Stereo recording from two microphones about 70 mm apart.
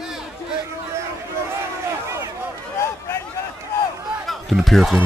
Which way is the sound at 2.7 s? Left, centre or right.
Left.